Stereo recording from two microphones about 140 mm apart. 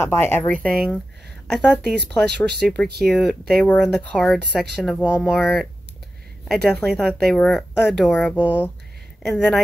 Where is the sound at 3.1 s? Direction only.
10° left (ahead or behind).